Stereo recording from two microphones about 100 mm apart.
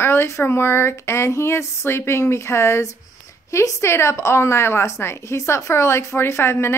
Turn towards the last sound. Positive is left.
turn(degrees=25)  # may be behind; listen again after turning